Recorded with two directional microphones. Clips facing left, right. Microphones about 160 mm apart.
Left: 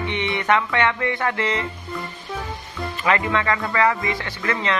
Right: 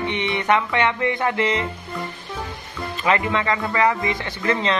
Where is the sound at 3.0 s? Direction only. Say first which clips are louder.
Even; 20° right (ahead or behind).